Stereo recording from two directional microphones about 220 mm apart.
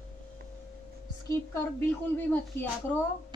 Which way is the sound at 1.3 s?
15° left (ahead or behind).